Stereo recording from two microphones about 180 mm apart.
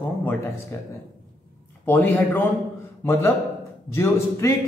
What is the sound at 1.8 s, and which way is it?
A man's voice, 10° left (ahead or behind).